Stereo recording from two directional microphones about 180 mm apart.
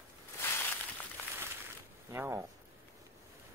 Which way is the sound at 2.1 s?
15° right (ahead or behind).